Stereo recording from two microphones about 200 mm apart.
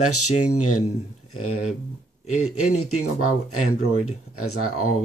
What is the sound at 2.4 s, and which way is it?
Speech, 90° left.